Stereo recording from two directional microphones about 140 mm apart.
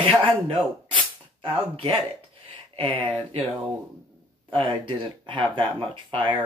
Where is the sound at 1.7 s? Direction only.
40° right (ahead or behind).